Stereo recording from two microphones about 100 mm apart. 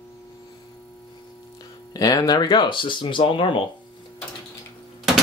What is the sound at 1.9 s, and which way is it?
Speech, 40° left (ahead or behind).